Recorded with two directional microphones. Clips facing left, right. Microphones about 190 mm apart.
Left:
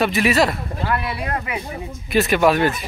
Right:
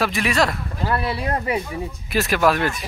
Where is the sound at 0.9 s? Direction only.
30° right (ahead or behind).